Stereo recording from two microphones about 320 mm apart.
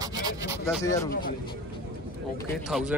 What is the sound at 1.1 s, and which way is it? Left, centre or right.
Speech, left.